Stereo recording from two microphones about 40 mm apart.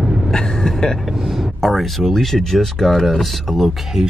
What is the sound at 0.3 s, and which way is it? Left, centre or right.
Vehicle, centre.